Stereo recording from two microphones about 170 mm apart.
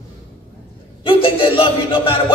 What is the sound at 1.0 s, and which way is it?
Speech, 30° left (ahead or behind).